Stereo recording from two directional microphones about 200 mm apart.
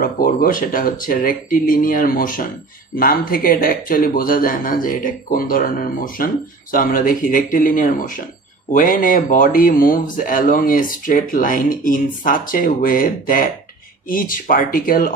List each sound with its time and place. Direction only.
0.0 s speech: 45° left (ahead or behind)